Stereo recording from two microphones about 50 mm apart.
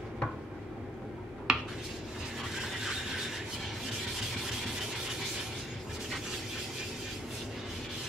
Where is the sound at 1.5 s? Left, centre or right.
Centre.